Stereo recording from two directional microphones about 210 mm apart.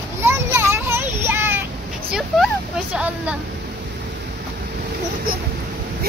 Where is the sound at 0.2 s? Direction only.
10° right (ahead or behind).